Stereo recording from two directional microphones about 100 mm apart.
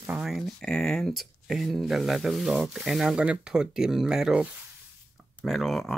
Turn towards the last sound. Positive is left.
turn(degrees=0)  # may be behind; listen again after turning